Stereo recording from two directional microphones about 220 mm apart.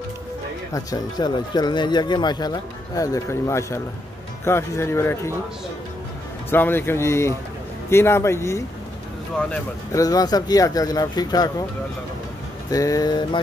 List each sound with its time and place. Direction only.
0.7 s speech: 20° left (ahead or behind)
6.5 s speech: 10° left (ahead or behind)
12.6 s speech: 15° left (ahead or behind)